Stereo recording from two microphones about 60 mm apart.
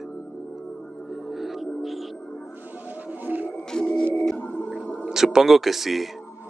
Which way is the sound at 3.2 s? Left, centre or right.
Right.